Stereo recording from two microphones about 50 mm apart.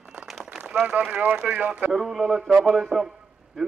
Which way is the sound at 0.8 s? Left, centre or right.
Right.